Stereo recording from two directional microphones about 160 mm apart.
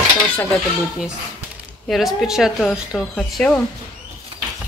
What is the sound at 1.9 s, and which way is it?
Speech, centre (ahead or behind).